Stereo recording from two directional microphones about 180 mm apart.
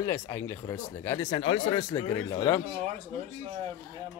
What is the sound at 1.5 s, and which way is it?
Speech, 30° left (ahead or behind).